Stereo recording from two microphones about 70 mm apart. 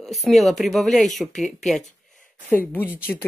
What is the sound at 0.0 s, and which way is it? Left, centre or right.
Speech, centre.